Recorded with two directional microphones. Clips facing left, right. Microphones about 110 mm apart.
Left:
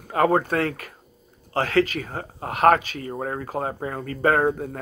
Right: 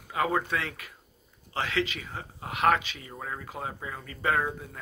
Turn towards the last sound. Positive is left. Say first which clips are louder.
# left 8 dB
turn(degrees=50)  # may be behind; listen again after turning